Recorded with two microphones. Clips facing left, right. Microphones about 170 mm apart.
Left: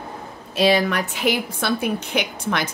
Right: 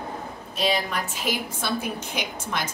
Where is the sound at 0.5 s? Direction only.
75° left (ahead or behind).